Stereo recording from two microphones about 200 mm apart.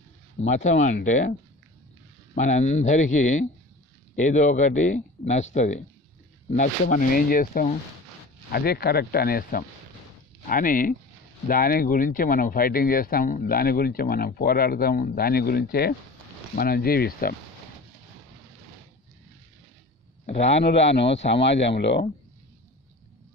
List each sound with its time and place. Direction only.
0.4 s speech: 35° left (ahead or behind)
2.3 s speech: 35° left (ahead or behind)
20.6 s speech: 60° left (ahead or behind)